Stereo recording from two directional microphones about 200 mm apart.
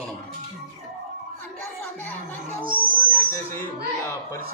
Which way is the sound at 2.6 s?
45° right (ahead or behind).